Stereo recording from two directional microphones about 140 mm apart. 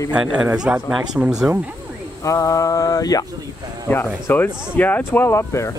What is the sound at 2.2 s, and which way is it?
Speech, 25° left (ahead or behind).